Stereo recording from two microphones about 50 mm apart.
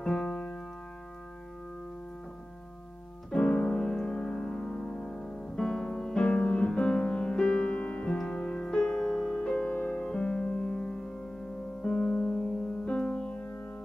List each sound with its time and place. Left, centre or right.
0.0 s keyboard: centre
3.3 s music: centre
6.2 s music: left
9.7 s music: left
10.0 s music: centre
11.9 s music: left